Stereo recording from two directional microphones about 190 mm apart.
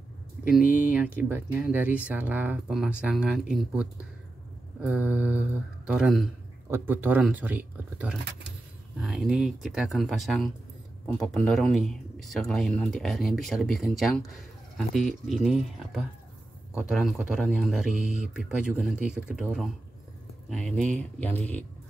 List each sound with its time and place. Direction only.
0.7 s speech: 10° right (ahead or behind); by 21.6 s 10° left (ahead or behind)